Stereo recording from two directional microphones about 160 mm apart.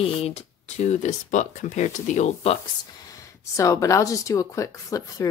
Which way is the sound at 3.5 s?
20° left (ahead or behind).